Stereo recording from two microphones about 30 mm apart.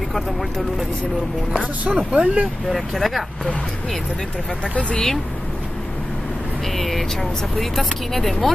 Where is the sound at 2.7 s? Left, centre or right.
Centre.